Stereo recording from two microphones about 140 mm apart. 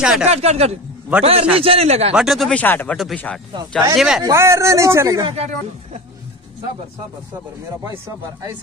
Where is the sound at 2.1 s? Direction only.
5° right (ahead or behind).